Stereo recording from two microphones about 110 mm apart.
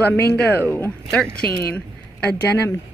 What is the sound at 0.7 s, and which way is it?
Speech, 20° left (ahead or behind).